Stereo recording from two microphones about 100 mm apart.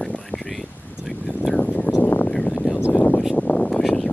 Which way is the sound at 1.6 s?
15° left (ahead or behind).